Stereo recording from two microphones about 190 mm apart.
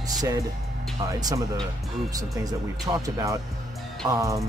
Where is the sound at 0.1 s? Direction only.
20° right (ahead or behind).